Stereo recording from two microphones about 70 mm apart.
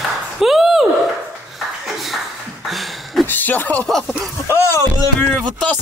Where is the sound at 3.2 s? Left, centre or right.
Left.